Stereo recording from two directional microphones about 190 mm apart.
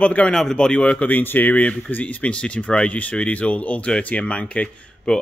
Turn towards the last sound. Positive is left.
turn(degrees=5)  # may be behind; listen again after turning